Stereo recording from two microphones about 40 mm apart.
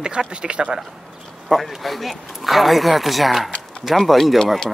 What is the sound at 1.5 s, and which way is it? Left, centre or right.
Speech, centre.